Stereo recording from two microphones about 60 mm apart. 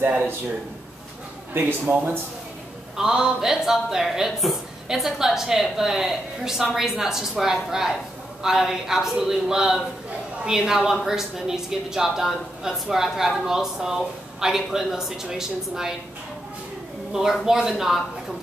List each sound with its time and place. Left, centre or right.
1.5 s speech: right
3.0 s a woman's voice: centre
17.1 s speech: centre